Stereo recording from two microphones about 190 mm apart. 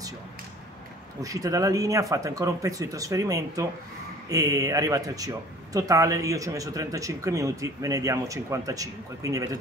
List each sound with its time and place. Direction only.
1.2 s speech: 15° right (ahead or behind)